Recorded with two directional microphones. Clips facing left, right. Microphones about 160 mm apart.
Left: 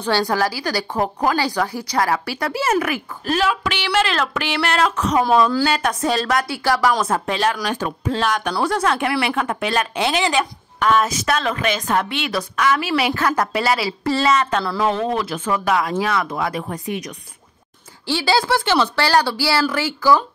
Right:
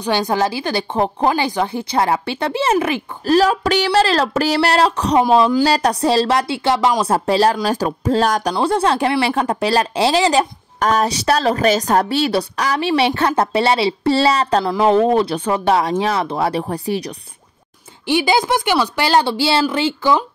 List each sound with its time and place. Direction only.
0.0 s a woman's voice: 20° right (ahead or behind)
5.7 s a woman's voice: 35° right (ahead or behind)
7.1 s speech: 35° right (ahead or behind)
8.5 s speech: 30° right (ahead or behind)
18.0 s a woman's voice: 20° right (ahead or behind)